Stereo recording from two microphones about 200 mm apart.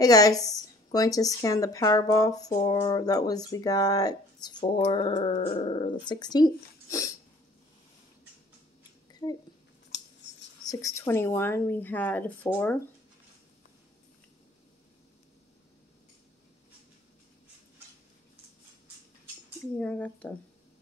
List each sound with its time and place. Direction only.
0.0 s a woman's voice: 20° left (ahead or behind)
9.1 s a sound: 20° left (ahead or behind)
9.8 s scissors: 60° left (ahead or behind)
10.7 s a woman's voice: 15° left (ahead or behind)
19.8 s a woman's voice: 5° left (ahead or behind)